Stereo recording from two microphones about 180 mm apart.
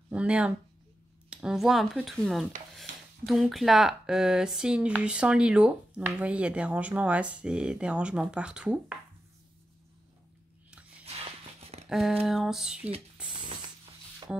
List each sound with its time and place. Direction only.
0.1 s speech: 5° right (ahead or behind)
11.1 s music: 35° right (ahead or behind)
11.9 s speech: centre (ahead or behind)
13.2 s a sound: 5° right (ahead or behind)
14.3 s music: 10° right (ahead or behind)